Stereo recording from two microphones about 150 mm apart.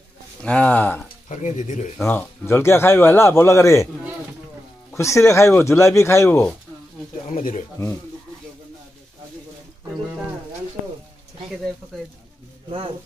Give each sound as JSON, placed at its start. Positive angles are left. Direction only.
{"t": 0.4, "sound": "speech", "side_deg": 10}
{"t": 1.3, "sound": "speech", "side_deg": 55}
{"t": 2.0, "sound": "speech", "side_deg": 15}
{"t": 4.9, "sound": "speech", "side_deg": 20}
{"t": 7.2, "sound": "speech", "side_deg": 60}